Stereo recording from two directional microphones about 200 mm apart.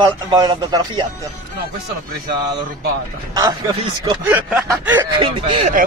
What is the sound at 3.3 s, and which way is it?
Speech, 20° right (ahead or behind).